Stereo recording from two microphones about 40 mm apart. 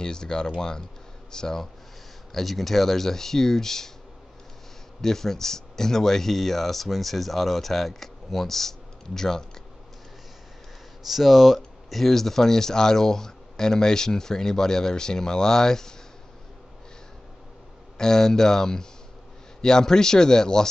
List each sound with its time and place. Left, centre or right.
0.0 s speech: centre
2.3 s speech: centre
5.0 s speech: centre
11.1 s speech: centre
17.9 s speech: centre